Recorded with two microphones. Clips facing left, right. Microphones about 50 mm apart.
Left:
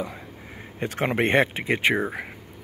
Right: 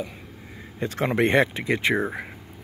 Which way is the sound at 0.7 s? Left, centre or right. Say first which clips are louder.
Even; left.